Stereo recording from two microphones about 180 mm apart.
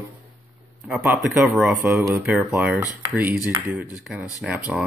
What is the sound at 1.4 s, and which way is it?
Speech, centre (ahead or behind).